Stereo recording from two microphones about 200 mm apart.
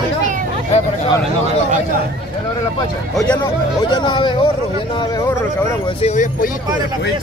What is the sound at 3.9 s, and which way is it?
Speech, 25° left (ahead or behind).